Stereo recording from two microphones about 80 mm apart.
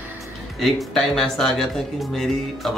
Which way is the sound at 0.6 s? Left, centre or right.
Centre.